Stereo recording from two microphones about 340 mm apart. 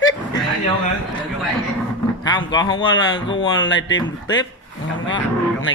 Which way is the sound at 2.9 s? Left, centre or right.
Left.